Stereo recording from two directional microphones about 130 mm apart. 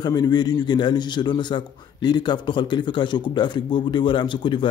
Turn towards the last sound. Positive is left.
turn(degrees=40)  # may be behind; listen again after turning